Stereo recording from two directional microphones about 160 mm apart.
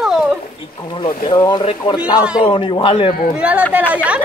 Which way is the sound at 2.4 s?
30° left (ahead or behind).